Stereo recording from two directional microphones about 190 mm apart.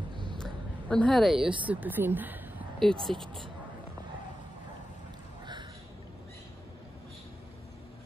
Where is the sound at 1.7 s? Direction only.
10° right (ahead or behind).